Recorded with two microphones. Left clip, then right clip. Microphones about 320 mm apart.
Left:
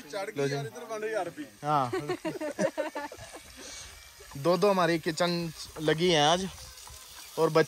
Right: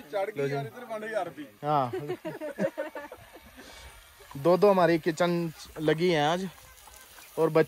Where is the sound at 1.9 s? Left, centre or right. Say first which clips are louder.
Left 2 dB; left.